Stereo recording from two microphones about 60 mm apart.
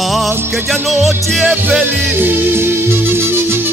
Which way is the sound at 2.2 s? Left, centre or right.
Right.